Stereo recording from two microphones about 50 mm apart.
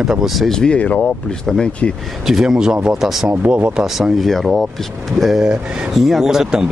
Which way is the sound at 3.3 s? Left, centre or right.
Right.